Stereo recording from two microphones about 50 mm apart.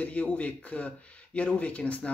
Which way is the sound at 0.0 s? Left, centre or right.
Left.